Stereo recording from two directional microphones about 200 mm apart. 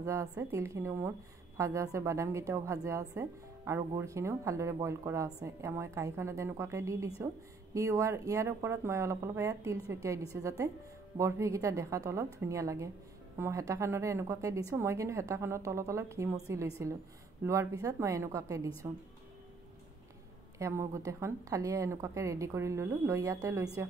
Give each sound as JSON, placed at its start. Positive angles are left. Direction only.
{"t": 0.0, "sound": "a woman's voice", "side_deg": -15}
{"t": 20.5, "sound": "a woman's voice", "side_deg": -15}